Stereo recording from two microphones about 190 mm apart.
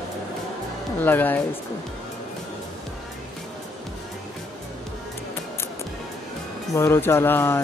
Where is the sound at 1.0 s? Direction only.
10° left (ahead or behind).